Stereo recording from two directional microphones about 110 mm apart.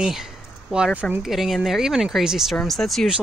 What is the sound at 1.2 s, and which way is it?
Speech, centre (ahead or behind).